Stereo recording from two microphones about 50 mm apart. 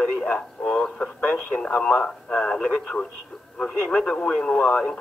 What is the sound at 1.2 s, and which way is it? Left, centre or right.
Speech, left.